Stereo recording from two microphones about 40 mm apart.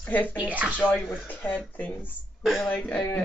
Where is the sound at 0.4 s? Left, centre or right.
Right.